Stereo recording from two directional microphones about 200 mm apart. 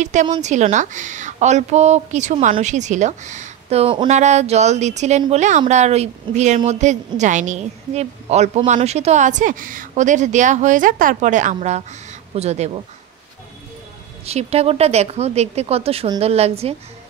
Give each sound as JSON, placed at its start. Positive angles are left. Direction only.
{"t": 0.0, "sound": "speech", "side_deg": -35}
{"t": 14.2, "sound": "speech", "side_deg": -30}